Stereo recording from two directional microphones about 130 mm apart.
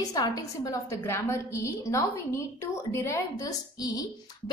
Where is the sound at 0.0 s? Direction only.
30° left (ahead or behind).